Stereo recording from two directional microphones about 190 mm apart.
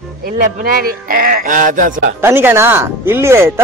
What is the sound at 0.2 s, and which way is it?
Speech, 50° right (ahead or behind).